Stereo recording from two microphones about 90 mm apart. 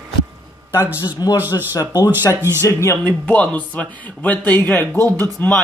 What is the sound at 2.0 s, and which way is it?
Speech, 25° right (ahead or behind).